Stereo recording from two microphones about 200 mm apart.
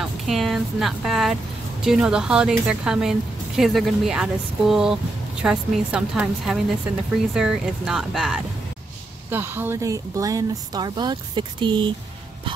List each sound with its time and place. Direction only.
0.0 s a woman's voice: centre (ahead or behind); by 11.9 s 25° right (ahead or behind)